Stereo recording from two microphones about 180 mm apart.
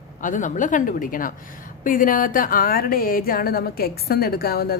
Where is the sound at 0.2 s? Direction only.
45° left (ahead or behind).